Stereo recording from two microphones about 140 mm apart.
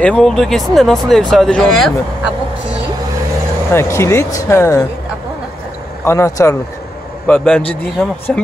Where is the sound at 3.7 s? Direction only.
20° left (ahead or behind).